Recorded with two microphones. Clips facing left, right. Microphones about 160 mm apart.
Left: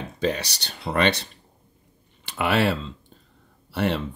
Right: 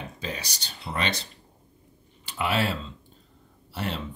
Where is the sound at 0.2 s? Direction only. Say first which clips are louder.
Left 13 dB; 70° left (ahead or behind).